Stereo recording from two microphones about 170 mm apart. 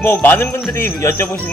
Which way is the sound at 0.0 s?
10° left (ahead or behind).